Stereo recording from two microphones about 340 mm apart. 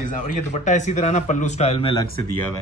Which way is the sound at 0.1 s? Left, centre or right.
Left.